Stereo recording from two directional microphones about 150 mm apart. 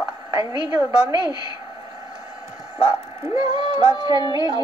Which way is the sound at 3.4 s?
30° right (ahead or behind).